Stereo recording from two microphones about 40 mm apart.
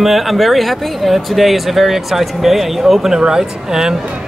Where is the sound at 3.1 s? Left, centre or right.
Centre.